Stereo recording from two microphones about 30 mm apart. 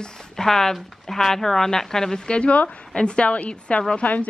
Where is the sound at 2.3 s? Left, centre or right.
Left.